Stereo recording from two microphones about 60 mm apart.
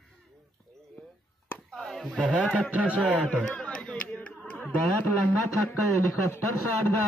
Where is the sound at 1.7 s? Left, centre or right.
Centre.